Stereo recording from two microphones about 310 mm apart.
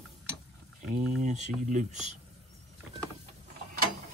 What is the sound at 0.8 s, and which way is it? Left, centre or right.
Speech, right.